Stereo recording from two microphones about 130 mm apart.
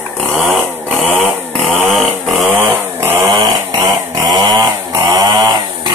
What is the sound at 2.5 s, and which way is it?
Chainsaw, 15° right (ahead or behind).